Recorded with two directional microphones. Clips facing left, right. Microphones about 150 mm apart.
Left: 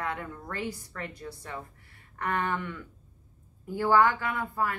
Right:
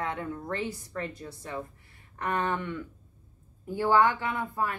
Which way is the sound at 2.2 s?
20° right (ahead or behind).